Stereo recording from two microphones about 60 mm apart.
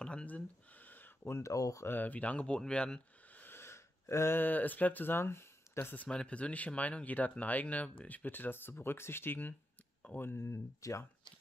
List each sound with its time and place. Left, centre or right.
0.0 s a sound: centre
1.2 s speech: left
1.5 s speech: left
1.9 s speech: left; by 3.0 s centre
3.3 s gasp: left
4.4 s speech: left
5.9 s speech: centre; by 10.4 s left
10.4 s speech: left